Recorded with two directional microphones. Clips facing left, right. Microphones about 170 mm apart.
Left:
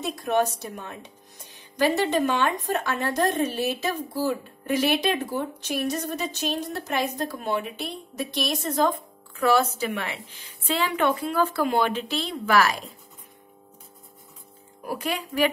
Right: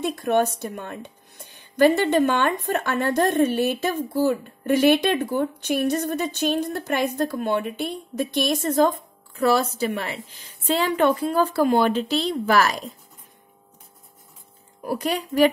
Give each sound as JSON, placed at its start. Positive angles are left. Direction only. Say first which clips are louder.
{"t": 0.0, "sound": "a woman's voice", "louder": "right 3 dB", "side_deg": -60}
{"t": 14.9, "sound": "a woman's voice", "louder": "right 4 dB", "side_deg": -40}